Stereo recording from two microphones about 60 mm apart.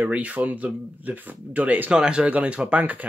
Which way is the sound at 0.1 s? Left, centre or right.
Right.